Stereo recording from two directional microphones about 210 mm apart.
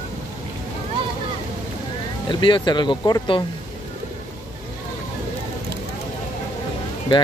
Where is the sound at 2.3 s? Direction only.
20° left (ahead or behind).